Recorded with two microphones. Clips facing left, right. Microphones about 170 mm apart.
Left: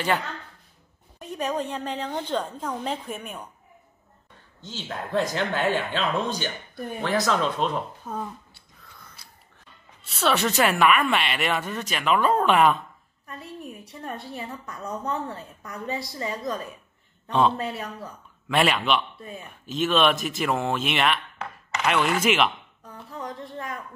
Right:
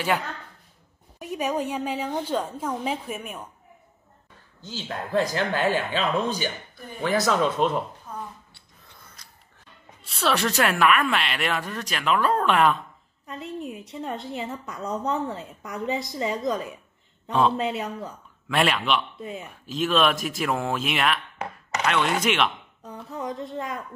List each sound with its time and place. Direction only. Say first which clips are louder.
1.2 s a woman's voice: right 2 dB; 10° right (ahead or behind)
4.6 s a woman's voice: right 1 dB; centre (ahead or behind)
10.0 s a woman's voice: left 1 dB; centre (ahead or behind)
13.3 s a woman's voice: right 5 dB; 20° right (ahead or behind)
17.3 s a woman's voice: even; centre (ahead or behind)
17.6 s a woman's voice: right 4 dB; 20° right (ahead or behind)
18.5 s a woman's voice: left 1 dB; centre (ahead or behind)
19.1 s speech: right 4 dB; 20° right (ahead or behind)
19.4 s a woman's voice: left 2 dB; centre (ahead or behind)
23.0 s speech: right 4 dB; 20° right (ahead or behind)